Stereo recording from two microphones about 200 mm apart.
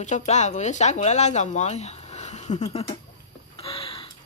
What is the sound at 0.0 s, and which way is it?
Speech, 35° left (ahead or behind).